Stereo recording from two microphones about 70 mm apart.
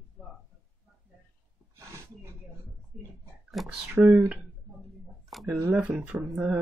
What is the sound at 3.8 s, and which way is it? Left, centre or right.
Speech, right.